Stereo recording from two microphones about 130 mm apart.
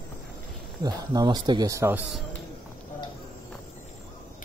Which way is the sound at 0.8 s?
30° right (ahead or behind).